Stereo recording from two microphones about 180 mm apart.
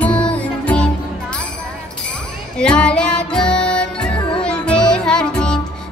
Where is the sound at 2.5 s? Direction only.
5° left (ahead or behind).